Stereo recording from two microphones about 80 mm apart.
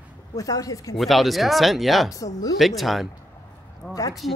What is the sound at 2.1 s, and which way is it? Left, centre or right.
Speech, left.